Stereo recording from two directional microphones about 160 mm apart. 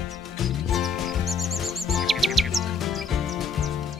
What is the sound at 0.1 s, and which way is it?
Music, centre (ahead or behind).